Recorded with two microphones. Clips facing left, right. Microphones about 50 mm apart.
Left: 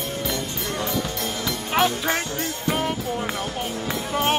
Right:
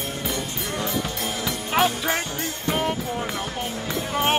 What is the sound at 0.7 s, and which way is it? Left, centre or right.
Music, centre.